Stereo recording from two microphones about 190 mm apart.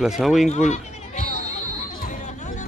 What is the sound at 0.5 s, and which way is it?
Chatter, 40° left (ahead or behind).